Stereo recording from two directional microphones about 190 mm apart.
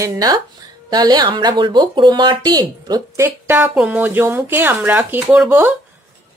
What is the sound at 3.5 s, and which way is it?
Speech, 10° right (ahead or behind).